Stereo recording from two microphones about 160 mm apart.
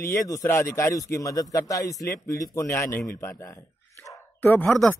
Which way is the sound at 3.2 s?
15° left (ahead or behind).